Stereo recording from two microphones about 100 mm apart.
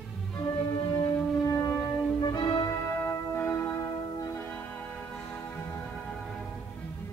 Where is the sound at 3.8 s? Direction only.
40° left (ahead or behind).